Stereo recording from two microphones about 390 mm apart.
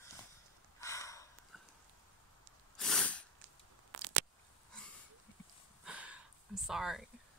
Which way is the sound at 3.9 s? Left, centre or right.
Right.